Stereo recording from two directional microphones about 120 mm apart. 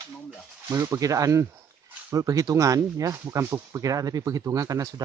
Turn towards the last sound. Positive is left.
turn(degrees=-30)  # may be behind; listen again after turning